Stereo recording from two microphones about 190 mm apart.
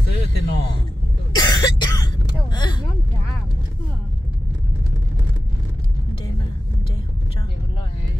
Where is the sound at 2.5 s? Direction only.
20° left (ahead or behind).